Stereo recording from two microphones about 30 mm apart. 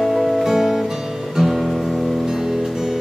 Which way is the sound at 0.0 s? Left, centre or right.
Centre.